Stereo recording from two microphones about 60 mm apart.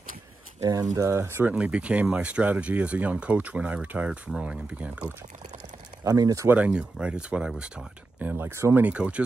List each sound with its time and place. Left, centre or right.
0.6 s speech: right
1.0 s speech: right
1.6 s speech: centre
6.0 s speech: right
6.5 s speech: centre
8.2 s speech: right
8.5 s speech: right
8.8 s speech: right